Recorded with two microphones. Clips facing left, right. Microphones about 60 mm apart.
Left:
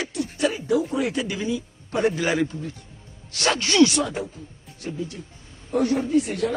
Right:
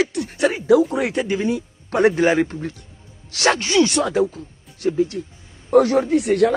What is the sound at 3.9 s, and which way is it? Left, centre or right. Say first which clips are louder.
Speech: right 4 dB; right.